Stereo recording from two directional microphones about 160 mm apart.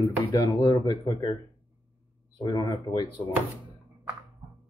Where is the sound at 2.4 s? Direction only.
25° left (ahead or behind).